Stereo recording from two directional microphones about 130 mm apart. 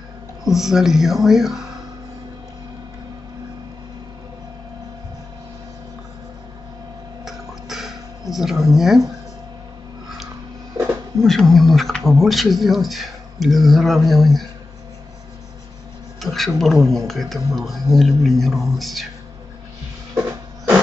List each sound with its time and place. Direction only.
0.5 s speech: 5° right (ahead or behind)
7.2 s a sound: centre (ahead or behind)
8.7 s speech: centre (ahead or behind)
10.8 s a sound: 30° right (ahead or behind)
11.1 s speech: 5° left (ahead or behind)
16.2 s speech: centre (ahead or behind)